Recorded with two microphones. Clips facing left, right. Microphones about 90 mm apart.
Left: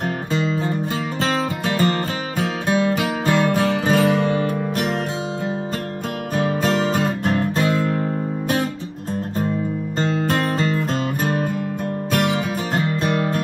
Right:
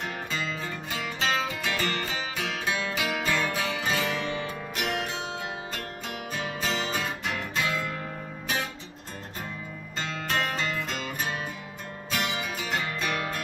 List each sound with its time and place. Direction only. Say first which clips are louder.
0.3 s music: left 14 dB; 35° left (ahead or behind)
6.3 s music: left 12 dB; 50° left (ahead or behind)
9.9 s music: left 8 dB; 40° left (ahead or behind)
12.1 s music: left 9 dB; 50° left (ahead or behind)
13.0 s music: left 9 dB; 35° left (ahead or behind)